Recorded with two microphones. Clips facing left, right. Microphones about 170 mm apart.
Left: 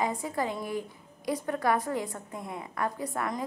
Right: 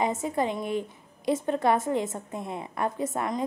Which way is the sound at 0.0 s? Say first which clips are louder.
Right 4 dB; 20° right (ahead or behind).